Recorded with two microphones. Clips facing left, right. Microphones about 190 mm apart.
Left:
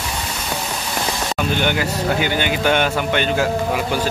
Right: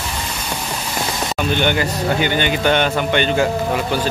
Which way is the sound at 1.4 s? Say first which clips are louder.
Right 2 dB; 5° left (ahead or behind).